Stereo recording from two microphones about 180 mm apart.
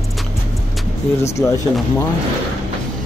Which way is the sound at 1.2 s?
15° left (ahead or behind).